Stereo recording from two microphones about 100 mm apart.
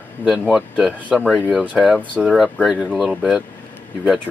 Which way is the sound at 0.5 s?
5° right (ahead or behind).